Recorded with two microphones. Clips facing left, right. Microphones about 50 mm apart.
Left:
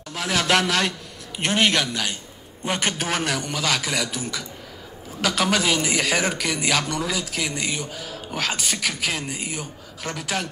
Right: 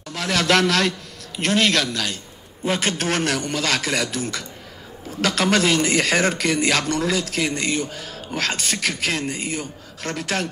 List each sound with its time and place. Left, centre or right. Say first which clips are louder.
0.1 s a man's voice: right 2 dB; centre